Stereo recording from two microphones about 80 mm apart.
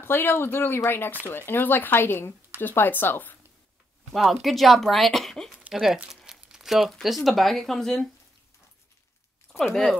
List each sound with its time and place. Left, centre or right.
0.0 s speech: left
4.1 s speech: centre